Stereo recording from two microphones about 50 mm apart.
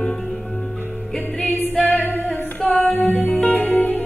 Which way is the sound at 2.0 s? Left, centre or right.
Left.